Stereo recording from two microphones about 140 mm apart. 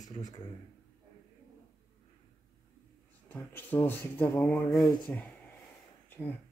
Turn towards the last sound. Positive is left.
turn(degrees=15)  # may be behind; listen again after turning